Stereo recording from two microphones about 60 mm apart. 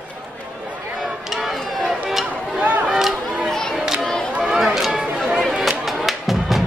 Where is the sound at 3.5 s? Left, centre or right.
Centre.